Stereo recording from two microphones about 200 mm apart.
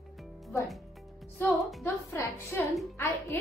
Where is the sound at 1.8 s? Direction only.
10° left (ahead or behind).